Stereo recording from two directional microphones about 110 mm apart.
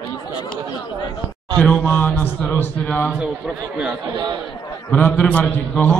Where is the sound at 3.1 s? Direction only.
10° right (ahead or behind).